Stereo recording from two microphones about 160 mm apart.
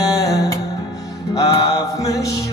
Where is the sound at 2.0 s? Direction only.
20° left (ahead or behind).